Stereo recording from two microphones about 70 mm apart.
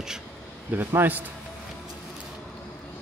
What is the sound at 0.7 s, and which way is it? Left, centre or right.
Speech, right.